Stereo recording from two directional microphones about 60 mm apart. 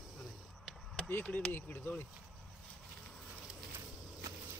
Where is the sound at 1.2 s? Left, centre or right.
Left.